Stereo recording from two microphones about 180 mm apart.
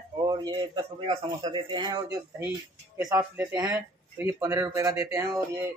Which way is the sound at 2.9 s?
15° right (ahead or behind).